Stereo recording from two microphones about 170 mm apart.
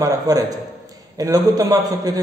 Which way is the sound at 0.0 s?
20° right (ahead or behind).